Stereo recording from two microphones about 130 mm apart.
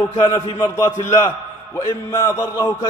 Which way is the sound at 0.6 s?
25° left (ahead or behind).